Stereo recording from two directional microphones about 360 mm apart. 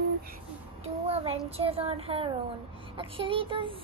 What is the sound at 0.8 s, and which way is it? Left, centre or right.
Child singing, centre.